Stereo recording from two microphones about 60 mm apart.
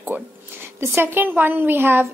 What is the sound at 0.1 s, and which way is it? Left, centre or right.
Speech, right.